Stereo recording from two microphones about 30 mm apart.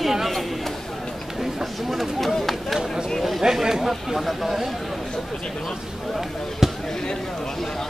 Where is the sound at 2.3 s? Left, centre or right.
Centre.